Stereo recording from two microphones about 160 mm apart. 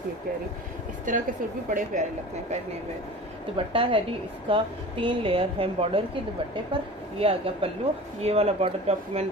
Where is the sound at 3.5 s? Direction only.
35° right (ahead or behind).